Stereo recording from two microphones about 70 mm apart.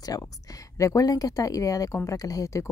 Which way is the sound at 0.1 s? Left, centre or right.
Left.